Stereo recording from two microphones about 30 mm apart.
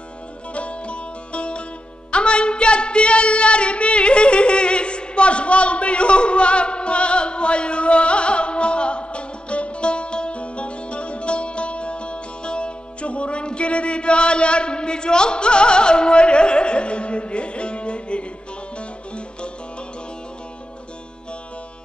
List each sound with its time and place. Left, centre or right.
0.6 s music: left